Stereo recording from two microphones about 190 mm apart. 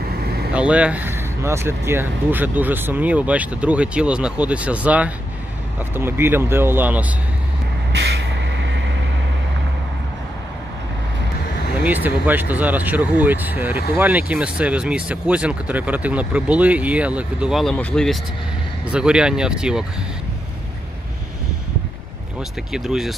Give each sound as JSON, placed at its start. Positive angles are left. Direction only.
{"t": 0.2, "sound": "vehicle", "side_deg": -55}
{"t": 0.5, "sound": "speech", "side_deg": -5}
{"t": 7.9, "sound": "vehicle", "side_deg": -60}
{"t": 11.8, "sound": "speech", "side_deg": -10}
{"t": 22.7, "sound": "speech", "side_deg": 0}